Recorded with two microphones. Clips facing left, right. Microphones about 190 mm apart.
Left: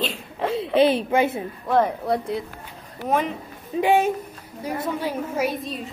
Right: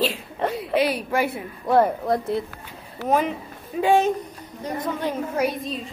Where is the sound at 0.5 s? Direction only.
25° left (ahead or behind).